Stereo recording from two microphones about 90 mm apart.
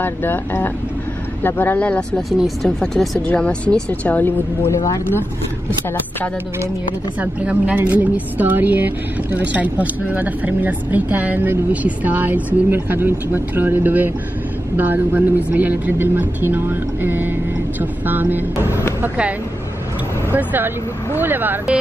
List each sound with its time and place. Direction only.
0.0 s speech: 20° left (ahead or behind)
2.3 s speech: centre (ahead or behind)
3.3 s speech: 15° left (ahead or behind)
4.6 s speech: 40° left (ahead or behind)
7.2 s a woman's voice: 15° right (ahead or behind)
20.3 s a woman's voice: 20° right (ahead or behind)